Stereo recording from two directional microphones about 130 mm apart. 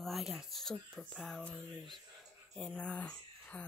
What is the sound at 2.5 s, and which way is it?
Speech, 5° left (ahead or behind).